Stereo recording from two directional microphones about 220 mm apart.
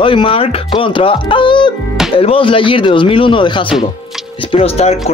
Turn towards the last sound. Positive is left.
turn(degrees=30)  # may be behind; listen again after turning